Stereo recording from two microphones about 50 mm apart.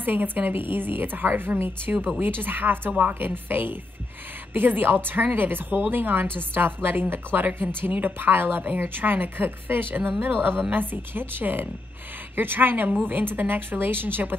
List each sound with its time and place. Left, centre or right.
0.0 s a woman's voice: right
3.0 s a woman's voice: right